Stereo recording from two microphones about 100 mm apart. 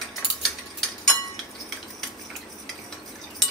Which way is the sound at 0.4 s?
5° left (ahead or behind).